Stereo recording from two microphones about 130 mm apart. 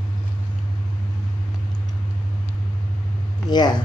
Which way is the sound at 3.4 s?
35° left (ahead or behind).